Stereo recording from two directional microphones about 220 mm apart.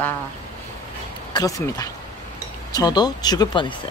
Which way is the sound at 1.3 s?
15° left (ahead or behind).